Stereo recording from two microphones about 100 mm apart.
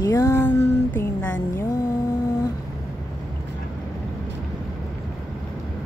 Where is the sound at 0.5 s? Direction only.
25° left (ahead or behind).